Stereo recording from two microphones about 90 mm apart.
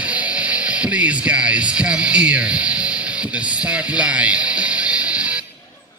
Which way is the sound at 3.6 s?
15° right (ahead or behind).